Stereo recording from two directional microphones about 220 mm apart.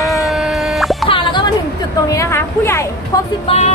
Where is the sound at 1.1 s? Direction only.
20° left (ahead or behind).